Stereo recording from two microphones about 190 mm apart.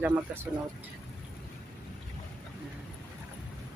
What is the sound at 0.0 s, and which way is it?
Speech, 10° right (ahead or behind).